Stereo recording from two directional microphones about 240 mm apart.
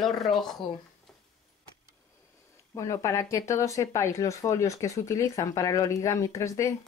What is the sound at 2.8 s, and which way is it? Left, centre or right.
Speech, centre.